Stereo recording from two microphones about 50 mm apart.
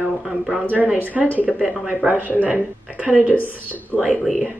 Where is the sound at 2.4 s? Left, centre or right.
Right.